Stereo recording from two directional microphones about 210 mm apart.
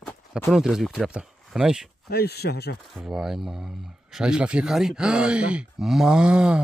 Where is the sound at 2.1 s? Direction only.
50° left (ahead or behind).